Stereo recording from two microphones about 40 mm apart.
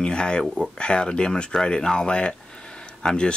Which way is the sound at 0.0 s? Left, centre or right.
Left.